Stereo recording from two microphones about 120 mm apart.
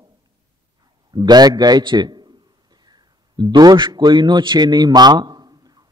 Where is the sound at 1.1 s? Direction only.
35° right (ahead or behind).